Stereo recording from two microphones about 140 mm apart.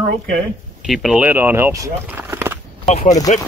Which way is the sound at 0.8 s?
5° right (ahead or behind).